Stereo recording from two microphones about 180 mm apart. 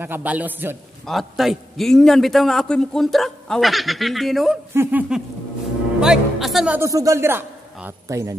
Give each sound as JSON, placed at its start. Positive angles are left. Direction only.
{"t": 0.0, "sound": "a man's voice", "side_deg": -10}
{"t": 1.0, "sound": "a man's voice", "side_deg": 0}
{"t": 6.8, "sound": "a man's voice", "side_deg": -20}